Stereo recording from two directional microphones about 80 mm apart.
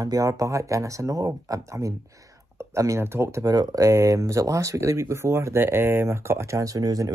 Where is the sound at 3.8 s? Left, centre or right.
Right.